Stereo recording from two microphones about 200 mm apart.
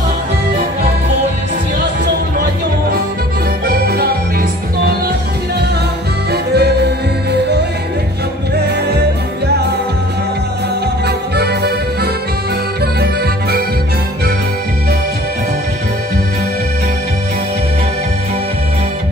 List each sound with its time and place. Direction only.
3.6 s music: 50° right (ahead or behind)
6.3 s music: 55° right (ahead or behind)
11.1 s accordion: 55° right (ahead or behind)
12.8 s music: 50° right (ahead or behind)